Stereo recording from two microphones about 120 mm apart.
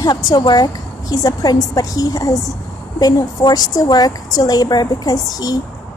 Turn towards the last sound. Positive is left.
turn(degrees=30)  # may be behind; listen again after turning